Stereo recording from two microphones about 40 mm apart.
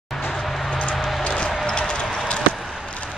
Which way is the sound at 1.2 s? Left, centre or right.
Left.